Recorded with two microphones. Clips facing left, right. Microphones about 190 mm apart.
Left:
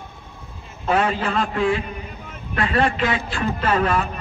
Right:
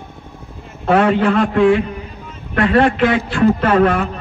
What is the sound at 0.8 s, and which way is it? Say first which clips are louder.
A man's voice: right 7 dB; 60° right (ahead or behind).